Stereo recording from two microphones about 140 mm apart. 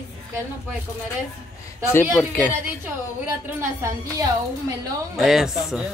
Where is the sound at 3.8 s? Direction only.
25° right (ahead or behind).